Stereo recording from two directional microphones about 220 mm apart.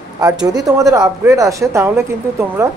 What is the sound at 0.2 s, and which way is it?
Speech, 15° right (ahead or behind).